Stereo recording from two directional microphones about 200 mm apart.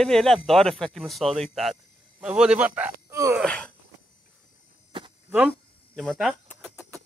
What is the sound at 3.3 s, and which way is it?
Wheeze, 5° left (ahead or behind).